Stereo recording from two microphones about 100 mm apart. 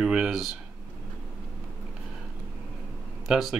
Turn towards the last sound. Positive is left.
turn(degrees=0)  # may be behind; listen again after turning